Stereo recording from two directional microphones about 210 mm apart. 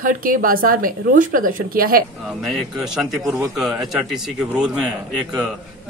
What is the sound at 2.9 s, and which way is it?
Speech, 5° right (ahead or behind).